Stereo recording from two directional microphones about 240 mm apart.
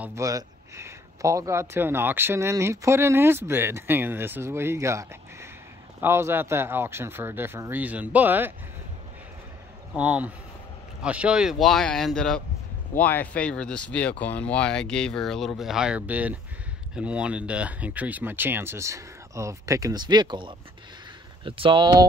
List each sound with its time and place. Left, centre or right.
0.0 s speech: centre
9.9 s speech: centre